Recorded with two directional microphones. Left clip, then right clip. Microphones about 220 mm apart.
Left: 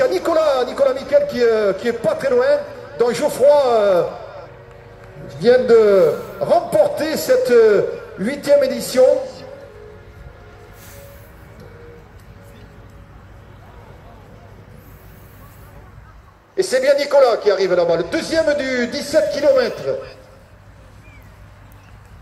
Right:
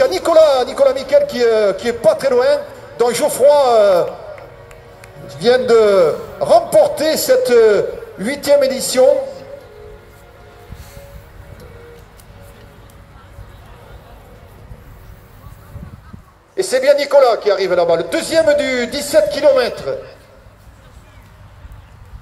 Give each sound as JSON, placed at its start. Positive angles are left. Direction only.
{"t": 0.0, "sound": "a man's voice", "side_deg": -20}
{"t": 5.3, "sound": "a man's voice", "side_deg": -15}
{"t": 16.5, "sound": "a man's voice", "side_deg": -20}